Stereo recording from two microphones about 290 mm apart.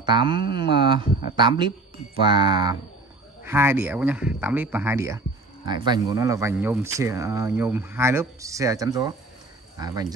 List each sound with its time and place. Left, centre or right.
0.0 s speech: centre